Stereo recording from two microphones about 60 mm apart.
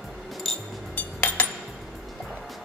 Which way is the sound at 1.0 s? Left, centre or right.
Left.